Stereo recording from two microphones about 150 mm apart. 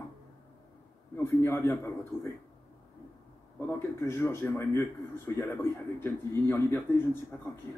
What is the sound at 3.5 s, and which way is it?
A man's voice, 15° left (ahead or behind).